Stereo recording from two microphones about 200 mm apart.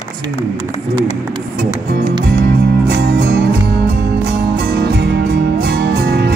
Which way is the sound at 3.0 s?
55° right (ahead or behind).